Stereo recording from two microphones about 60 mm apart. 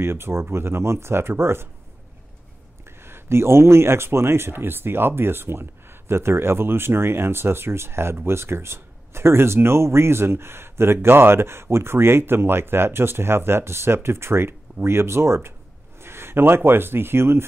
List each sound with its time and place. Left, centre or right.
0.0 s speech: right
2.8 s speech: right